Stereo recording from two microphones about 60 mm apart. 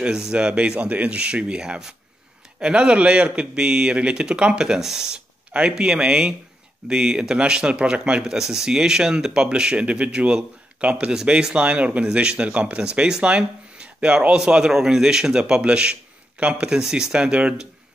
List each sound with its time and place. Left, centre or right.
0.0 s speech: centre